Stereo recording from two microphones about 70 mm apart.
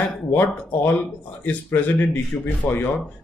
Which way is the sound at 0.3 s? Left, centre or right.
Left.